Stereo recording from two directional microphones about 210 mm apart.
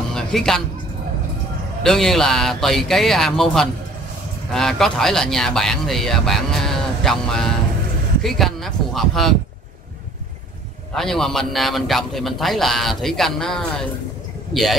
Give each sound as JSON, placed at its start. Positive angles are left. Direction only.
{"t": 0.1, "sound": "music", "side_deg": 0}
{"t": 1.8, "sound": "speech", "side_deg": 0}
{"t": 11.0, "sound": "speech", "side_deg": 0}